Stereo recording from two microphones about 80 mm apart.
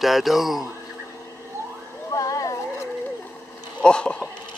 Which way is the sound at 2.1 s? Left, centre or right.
Left.